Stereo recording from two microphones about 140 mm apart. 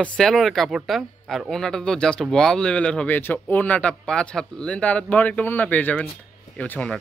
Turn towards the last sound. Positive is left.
turn(degrees=10)  # may be behind; listen again after turning